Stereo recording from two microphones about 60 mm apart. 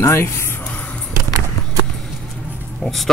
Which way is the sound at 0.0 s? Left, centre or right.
Left.